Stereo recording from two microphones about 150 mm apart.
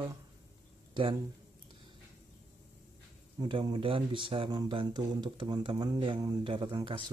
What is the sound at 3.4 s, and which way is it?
Speech, 35° right (ahead or behind).